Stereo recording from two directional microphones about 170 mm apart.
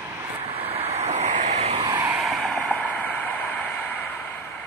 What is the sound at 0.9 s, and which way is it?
Vehicle, 40° right (ahead or behind).